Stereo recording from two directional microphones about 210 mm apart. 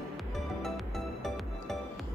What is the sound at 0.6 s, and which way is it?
Music, centre (ahead or behind).